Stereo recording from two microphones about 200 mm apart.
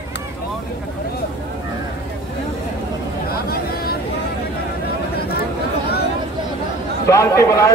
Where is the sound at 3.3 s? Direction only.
50° left (ahead or behind).